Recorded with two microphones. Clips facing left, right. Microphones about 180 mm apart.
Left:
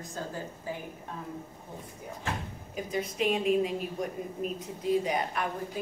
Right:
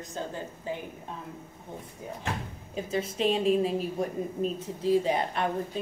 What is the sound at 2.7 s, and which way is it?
A woman's voice, 30° right (ahead or behind).